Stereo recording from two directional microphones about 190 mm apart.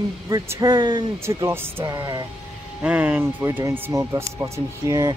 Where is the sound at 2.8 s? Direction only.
5° right (ahead or behind).